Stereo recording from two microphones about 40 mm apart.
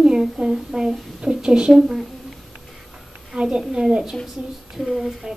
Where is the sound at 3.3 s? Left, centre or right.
Centre.